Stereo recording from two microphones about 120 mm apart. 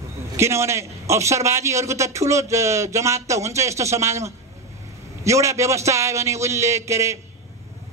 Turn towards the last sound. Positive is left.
turn(degrees=-25)  # may be behind; listen again after turning